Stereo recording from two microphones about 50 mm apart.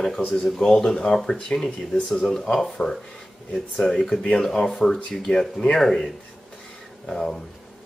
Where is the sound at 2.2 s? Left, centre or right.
Centre.